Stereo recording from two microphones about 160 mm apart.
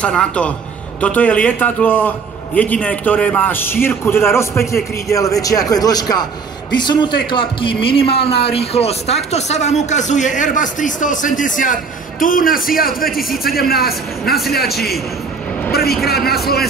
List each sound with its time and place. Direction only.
0.0 s a man's voice: 5° left (ahead or behind); by 14.8 s 75° left (ahead or behind)
16.3 s a man's voice: 75° left (ahead or behind)